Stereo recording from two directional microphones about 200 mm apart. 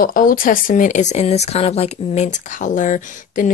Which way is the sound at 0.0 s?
45° left (ahead or behind).